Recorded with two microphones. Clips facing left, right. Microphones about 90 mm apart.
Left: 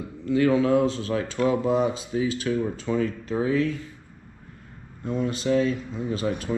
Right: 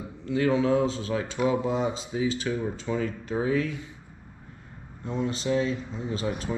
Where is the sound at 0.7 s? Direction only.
50° left (ahead or behind).